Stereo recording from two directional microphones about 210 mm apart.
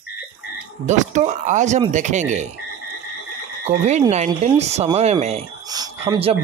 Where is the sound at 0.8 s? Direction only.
35° right (ahead or behind).